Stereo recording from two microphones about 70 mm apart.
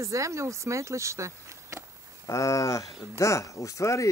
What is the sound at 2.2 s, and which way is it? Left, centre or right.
Speech, left.